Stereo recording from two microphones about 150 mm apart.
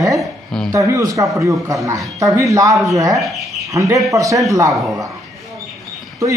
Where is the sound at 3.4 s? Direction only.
Centre (ahead or behind).